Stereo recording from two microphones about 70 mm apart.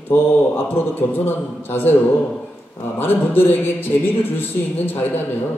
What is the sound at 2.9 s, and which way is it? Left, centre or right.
A man's voice, left.